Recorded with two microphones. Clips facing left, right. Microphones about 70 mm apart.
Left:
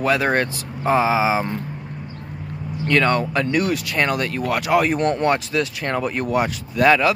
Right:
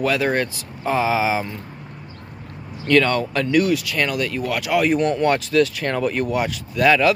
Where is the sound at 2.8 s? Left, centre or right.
Left.